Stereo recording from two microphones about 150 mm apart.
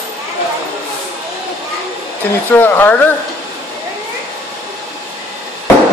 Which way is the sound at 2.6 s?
10° left (ahead or behind).